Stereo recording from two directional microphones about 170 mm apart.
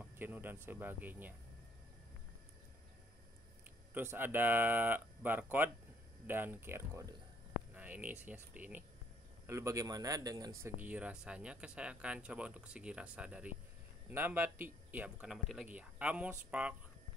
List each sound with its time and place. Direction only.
0.0 s speech: 10° right (ahead or behind)
3.9 s speech: 10° right (ahead or behind)
10.6 s speech: 10° right (ahead or behind)